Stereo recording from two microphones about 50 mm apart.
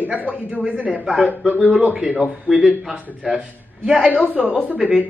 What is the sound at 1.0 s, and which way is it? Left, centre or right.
Speech, centre.